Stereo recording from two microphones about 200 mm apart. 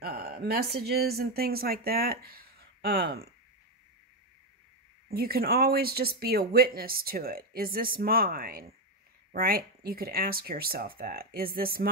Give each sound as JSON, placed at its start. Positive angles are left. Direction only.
{"t": 0.0, "sound": "a woman's voice", "side_deg": -50}
{"t": 5.1, "sound": "speech", "side_deg": -50}